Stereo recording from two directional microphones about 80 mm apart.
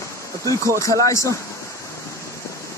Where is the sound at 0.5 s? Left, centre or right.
Left.